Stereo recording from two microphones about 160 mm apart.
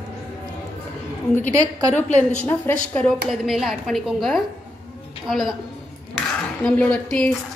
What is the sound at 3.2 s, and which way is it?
Speech, centre (ahead or behind).